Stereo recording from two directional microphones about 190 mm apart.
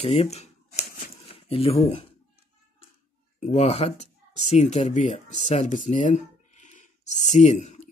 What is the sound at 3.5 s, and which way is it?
Speech, 35° left (ahead or behind).